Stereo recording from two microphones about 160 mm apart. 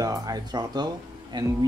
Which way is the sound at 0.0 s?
20° right (ahead or behind).